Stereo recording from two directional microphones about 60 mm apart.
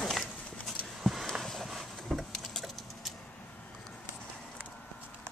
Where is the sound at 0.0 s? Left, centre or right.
Centre.